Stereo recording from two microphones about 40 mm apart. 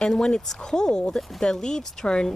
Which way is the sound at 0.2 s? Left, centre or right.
Centre.